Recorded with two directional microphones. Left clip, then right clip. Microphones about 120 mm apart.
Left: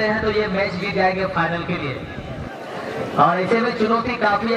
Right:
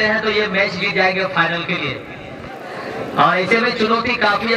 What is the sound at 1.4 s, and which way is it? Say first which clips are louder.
Speech: right 6 dB; 35° right (ahead or behind).